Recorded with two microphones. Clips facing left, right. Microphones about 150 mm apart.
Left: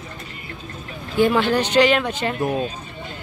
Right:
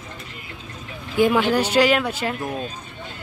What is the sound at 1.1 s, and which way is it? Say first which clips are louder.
A woman's voice: even; 10° right (ahead or behind).